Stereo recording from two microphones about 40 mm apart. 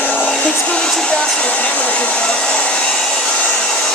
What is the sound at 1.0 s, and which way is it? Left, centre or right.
Hair dryer, left.